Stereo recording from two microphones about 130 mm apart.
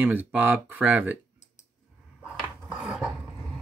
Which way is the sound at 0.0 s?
15° right (ahead or behind).